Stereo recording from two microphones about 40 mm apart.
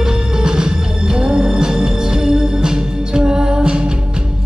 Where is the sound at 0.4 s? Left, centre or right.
Right.